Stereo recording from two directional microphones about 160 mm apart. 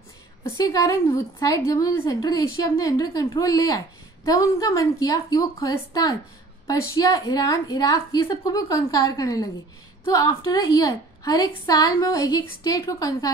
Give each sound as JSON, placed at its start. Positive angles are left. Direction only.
{"t": 0.4, "sound": "a woman's voice", "side_deg": 20}